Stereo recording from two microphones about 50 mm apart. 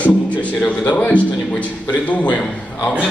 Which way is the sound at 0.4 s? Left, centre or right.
Left.